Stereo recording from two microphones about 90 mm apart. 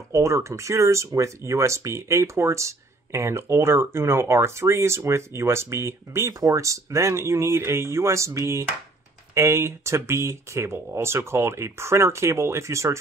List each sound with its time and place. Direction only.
0.1 s speech: 35° right (ahead or behind)